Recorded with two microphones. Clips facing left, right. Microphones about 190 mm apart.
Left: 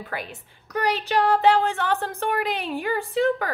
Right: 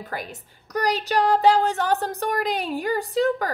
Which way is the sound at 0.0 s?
40° right (ahead or behind).